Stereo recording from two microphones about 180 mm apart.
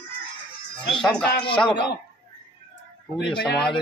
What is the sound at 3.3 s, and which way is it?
Speech, 65° left (ahead or behind).